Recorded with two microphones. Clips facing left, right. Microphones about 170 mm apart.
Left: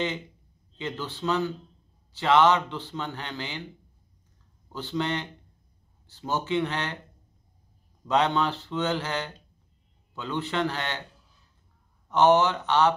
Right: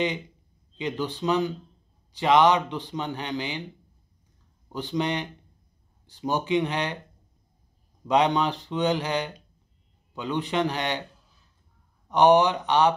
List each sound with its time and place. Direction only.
0.7 s a man's voice: 15° right (ahead or behind)
4.6 s a man's voice: 15° right (ahead or behind)
8.1 s a man's voice: 15° right (ahead or behind)
12.1 s a man's voice: 15° right (ahead or behind)